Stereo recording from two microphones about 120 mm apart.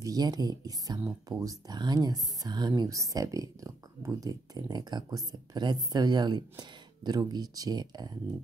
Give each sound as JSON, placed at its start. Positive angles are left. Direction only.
{"t": 0.0, "sound": "speech", "side_deg": -30}